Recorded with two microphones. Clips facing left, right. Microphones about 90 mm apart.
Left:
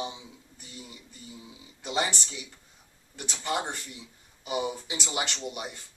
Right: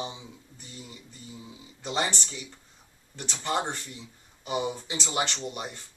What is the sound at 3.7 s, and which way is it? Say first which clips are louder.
Speech: right 1 dB; 10° left (ahead or behind).